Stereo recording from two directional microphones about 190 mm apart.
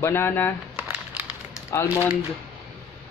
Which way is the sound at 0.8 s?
5° right (ahead or behind).